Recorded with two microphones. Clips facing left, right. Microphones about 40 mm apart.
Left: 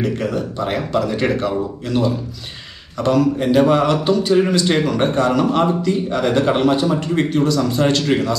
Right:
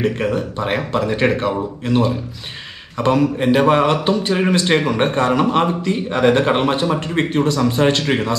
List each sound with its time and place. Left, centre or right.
0.0 s a man's voice: right